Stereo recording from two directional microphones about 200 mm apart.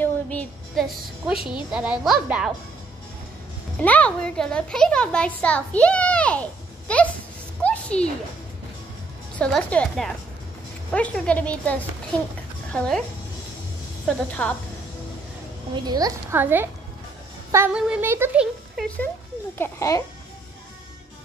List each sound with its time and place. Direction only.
0.0 s a woman's voice: 5° left (ahead or behind)
3.7 s a woman's voice: 5° left (ahead or behind)
7.6 s a sound: 5° left (ahead or behind)
9.4 s a woman's voice: 5° left (ahead or behind)
14.0 s a woman's voice: 5° left (ahead or behind)
15.7 s speech: 20° right (ahead or behind)
19.6 s a woman's voice: 15° left (ahead or behind)